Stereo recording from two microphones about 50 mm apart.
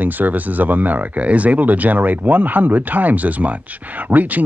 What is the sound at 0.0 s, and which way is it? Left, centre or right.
Speech, right.